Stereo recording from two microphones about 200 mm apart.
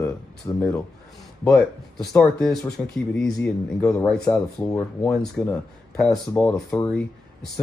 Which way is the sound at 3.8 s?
15° left (ahead or behind).